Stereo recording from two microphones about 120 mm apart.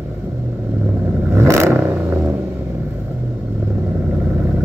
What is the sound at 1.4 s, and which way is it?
Vehicle, 25° right (ahead or behind).